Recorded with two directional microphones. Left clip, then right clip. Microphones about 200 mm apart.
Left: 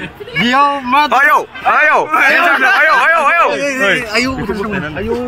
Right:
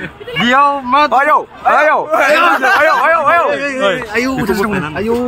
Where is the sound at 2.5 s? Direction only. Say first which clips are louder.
Left 1 dB; 65° right (ahead or behind).